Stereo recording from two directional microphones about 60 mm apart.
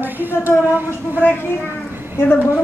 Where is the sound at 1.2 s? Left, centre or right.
Left.